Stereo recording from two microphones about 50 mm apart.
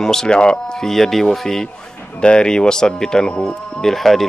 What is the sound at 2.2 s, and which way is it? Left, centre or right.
A man's voice, centre.